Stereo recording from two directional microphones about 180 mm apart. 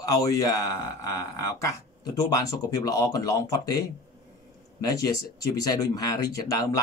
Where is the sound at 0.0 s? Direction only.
20° left (ahead or behind).